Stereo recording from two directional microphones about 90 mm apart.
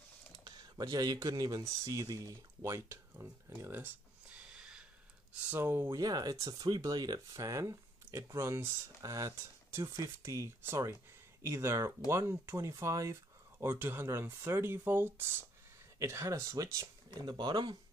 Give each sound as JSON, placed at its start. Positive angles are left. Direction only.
{"t": 0.4, "sound": "speech", "side_deg": -50}
{"t": 2.6, "sound": "a sound", "side_deg": -30}
{"t": 5.5, "sound": "speech", "side_deg": -25}
{"t": 5.9, "sound": "speech", "side_deg": -45}
{"t": 17.2, "sound": "speech", "side_deg": -55}